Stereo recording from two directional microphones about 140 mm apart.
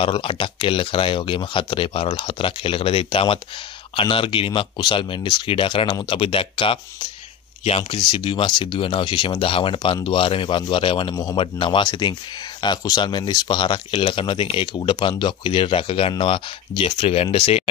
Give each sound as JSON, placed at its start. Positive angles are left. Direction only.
{"t": 0.0, "sound": "speech", "side_deg": 40}
{"t": 8.0, "sound": "speech", "side_deg": 35}